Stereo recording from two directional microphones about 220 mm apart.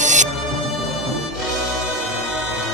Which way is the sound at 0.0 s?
35° right (ahead or behind).